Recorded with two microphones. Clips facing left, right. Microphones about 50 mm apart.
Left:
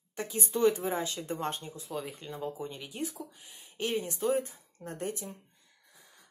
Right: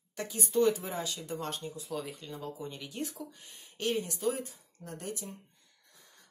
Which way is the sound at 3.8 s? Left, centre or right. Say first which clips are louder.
Even; left.